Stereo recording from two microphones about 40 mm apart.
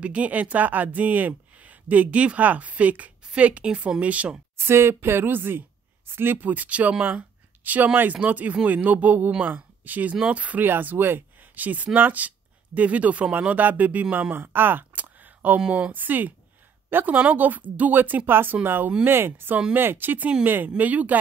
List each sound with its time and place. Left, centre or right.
0.0 s a woman's voice: right
4.6 s a woman's voice: right
10.6 s speech: right
14.3 s speech: right
14.9 s a sound: right
15.9 s speech: right
19.0 s speech: right
19.7 s speech: right
20.6 s a woman's voice: right